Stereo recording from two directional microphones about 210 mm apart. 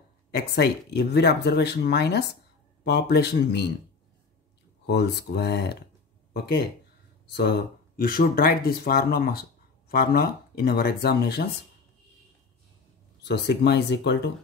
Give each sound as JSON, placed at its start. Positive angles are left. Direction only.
{"t": 0.3, "sound": "speech", "side_deg": 55}
{"t": 4.8, "sound": "speech", "side_deg": 50}
{"t": 13.2, "sound": "speech", "side_deg": 55}